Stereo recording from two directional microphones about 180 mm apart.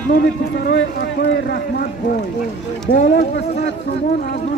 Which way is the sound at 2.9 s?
60° left (ahead or behind).